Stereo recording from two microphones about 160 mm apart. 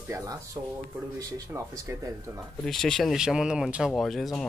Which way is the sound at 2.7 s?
5° left (ahead or behind).